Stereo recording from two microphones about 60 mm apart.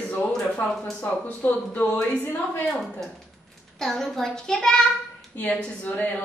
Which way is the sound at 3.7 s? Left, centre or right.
Centre.